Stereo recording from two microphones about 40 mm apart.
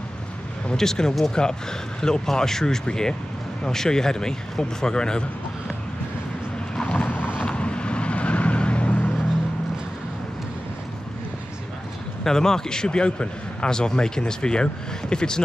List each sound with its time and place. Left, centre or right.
0.7 s a man's voice: centre
6.8 s boat: left
7.1 s boat: left
7.4 s vehicle: left
12.2 s a man's voice: centre